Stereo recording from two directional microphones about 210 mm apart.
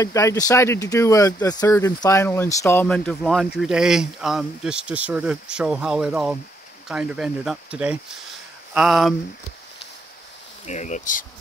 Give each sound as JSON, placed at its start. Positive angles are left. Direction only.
{"t": 0.0, "sound": "speech", "side_deg": 15}
{"t": 10.7, "sound": "speech", "side_deg": 35}